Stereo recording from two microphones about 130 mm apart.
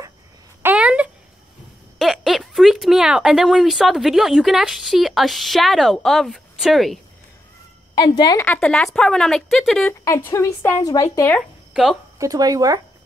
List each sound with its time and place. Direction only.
0.6 s a sound: 10° right (ahead or behind)
2.0 s speech: centre (ahead or behind)
7.9 s a woman's voice: 30° left (ahead or behind)
8.5 s speech: 5° left (ahead or behind)
10.0 s speech: 20° left (ahead or behind)
10.8 s a woman's voice: 30° left (ahead or behind)
11.7 s speech: centre (ahead or behind)
12.2 s speech: 30° right (ahead or behind)